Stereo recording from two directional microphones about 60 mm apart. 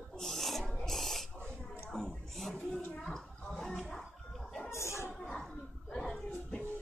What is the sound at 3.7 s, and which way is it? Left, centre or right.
Music, centre.